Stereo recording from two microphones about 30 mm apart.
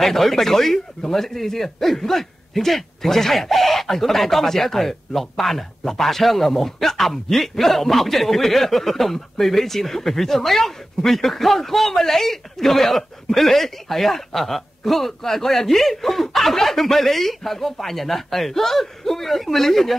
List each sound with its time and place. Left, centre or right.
0.0 s a man's voice: centre